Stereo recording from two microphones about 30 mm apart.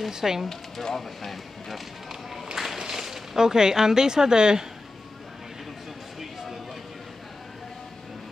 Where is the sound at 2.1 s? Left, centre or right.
Centre.